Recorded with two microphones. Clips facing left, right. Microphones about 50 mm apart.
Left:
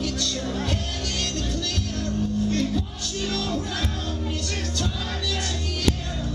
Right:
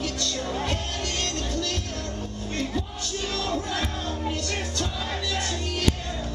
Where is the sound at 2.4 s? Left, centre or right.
Centre.